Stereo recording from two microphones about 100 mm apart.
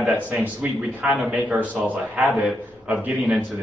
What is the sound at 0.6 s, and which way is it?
A man's voice, 10° right (ahead or behind).